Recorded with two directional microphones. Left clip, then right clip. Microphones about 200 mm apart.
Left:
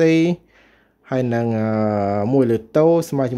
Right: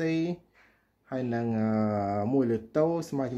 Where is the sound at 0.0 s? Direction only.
40° left (ahead or behind).